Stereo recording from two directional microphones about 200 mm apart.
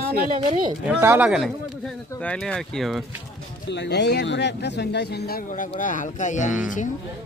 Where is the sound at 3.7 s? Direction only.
60° left (ahead or behind); by 6.8 s 40° left (ahead or behind).